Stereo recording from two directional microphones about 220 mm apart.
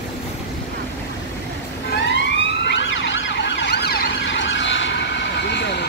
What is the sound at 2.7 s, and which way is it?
Emergency vehicle, 55° left (ahead or behind).